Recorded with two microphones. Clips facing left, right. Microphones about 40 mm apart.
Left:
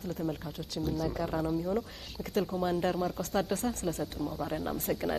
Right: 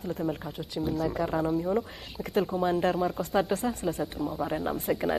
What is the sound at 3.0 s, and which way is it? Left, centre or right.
Speech, centre.